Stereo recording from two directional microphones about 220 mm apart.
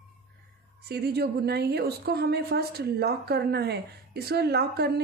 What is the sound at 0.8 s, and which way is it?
A woman's voice, 45° right (ahead or behind).